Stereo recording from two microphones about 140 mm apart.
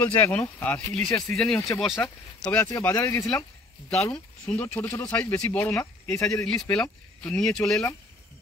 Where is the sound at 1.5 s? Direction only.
20° left (ahead or behind).